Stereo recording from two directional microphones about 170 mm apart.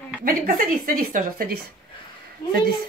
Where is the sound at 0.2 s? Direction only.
55° right (ahead or behind).